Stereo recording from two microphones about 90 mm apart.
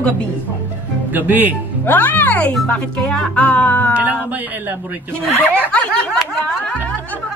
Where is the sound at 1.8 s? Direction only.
20° left (ahead or behind).